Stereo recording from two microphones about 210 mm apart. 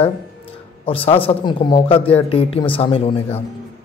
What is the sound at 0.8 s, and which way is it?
Speech, 25° left (ahead or behind).